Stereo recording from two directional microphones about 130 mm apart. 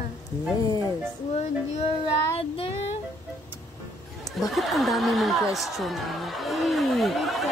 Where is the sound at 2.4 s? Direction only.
50° left (ahead or behind).